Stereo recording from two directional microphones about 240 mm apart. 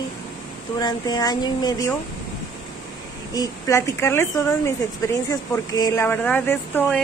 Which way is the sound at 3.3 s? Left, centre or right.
Centre.